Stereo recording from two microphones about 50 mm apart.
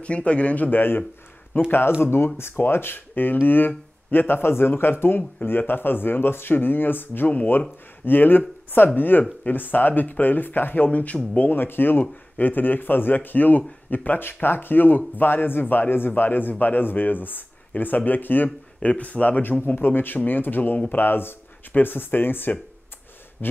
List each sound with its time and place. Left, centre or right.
0.0 s a man's voice: left
0.7 s speech: left
11.3 s speech: left
18.8 s a man's voice: left
19.6 s speech: left